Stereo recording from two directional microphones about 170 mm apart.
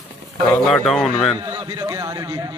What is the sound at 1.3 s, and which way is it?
A man's voice, 25° right (ahead or behind).